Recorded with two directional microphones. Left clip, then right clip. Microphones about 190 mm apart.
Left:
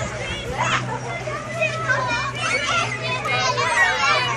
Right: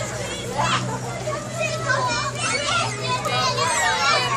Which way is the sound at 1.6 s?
55° right (ahead or behind).